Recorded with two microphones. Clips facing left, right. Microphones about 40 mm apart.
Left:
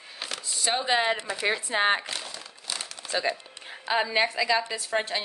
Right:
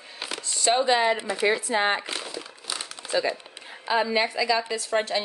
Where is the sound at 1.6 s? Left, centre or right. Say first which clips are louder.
Even; left.